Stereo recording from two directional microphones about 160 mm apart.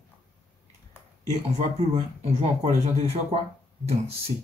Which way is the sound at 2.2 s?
40° right (ahead or behind).